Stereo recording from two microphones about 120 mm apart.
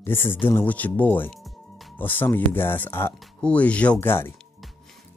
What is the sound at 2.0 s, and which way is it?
Speech, 15° left (ahead or behind).